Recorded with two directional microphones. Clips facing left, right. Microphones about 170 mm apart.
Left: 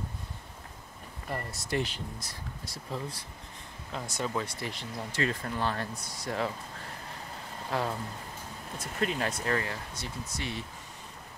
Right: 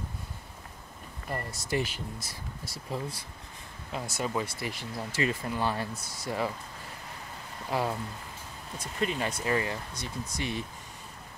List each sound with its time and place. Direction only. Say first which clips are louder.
1.3 s speech: right 1 dB; centre (ahead or behind)
7.7 s speech: right 2 dB; 10° right (ahead or behind)
8.7 s speech: even; centre (ahead or behind)
9.4 s speech: right 2 dB; 15° right (ahead or behind)